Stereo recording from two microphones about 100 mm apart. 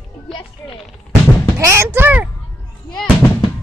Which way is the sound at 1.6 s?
25° right (ahead or behind).